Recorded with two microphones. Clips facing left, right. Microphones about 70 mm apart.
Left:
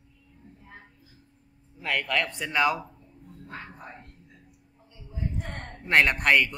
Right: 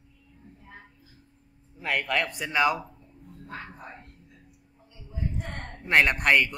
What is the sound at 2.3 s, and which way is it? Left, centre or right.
Speech, centre.